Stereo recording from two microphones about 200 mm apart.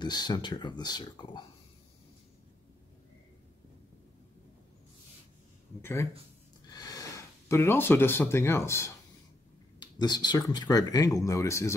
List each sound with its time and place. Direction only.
0.0 s speech: 20° left (ahead or behind)
5.8 s speech: 10° left (ahead or behind)